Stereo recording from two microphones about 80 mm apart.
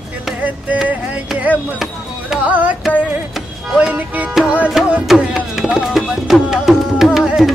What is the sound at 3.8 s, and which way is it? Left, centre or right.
Speech, centre.